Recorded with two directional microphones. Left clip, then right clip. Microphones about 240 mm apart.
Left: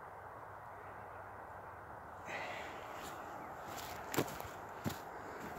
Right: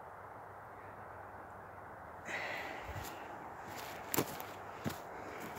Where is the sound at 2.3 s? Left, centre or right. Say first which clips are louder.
Right 3 dB; centre.